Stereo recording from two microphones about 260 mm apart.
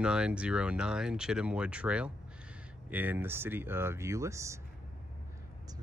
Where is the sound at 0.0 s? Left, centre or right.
Centre.